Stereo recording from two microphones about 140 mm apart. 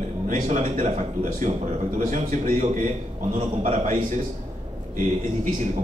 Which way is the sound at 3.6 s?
65° right (ahead or behind).